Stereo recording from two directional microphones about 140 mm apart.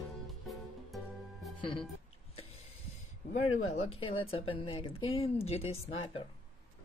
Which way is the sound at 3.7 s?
45° left (ahead or behind).